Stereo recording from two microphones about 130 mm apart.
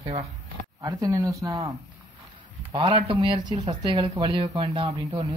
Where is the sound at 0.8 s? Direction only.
30° right (ahead or behind).